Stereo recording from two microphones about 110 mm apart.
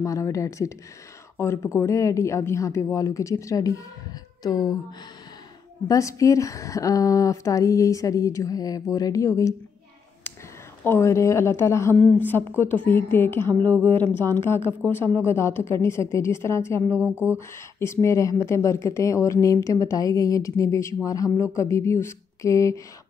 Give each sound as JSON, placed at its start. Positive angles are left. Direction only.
{"t": 0.0, "sound": "a woman's voice", "side_deg": 30}
{"t": 5.9, "sound": "a woman's voice", "side_deg": 30}
{"t": 10.8, "sound": "a woman's voice", "side_deg": 25}
{"t": 17.0, "sound": "speech", "side_deg": -15}
{"t": 17.7, "sound": "a woman's voice", "side_deg": 25}